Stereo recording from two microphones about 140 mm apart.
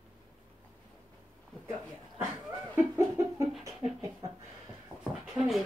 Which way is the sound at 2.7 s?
20° right (ahead or behind).